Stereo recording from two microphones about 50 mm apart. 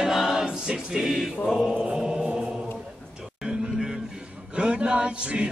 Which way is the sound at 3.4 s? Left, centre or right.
Centre.